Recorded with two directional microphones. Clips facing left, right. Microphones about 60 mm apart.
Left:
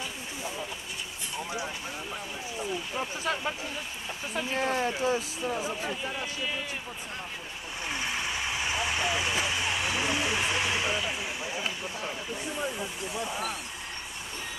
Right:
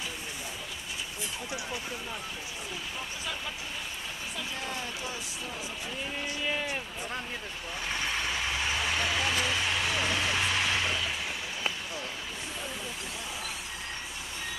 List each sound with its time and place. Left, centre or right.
4.6 s speech: left
5.1 s speech: left
7.9 s vehicle: centre
13.1 s speech: centre